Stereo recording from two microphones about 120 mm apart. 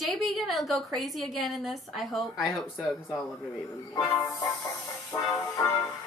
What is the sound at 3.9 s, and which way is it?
Music, 20° left (ahead or behind).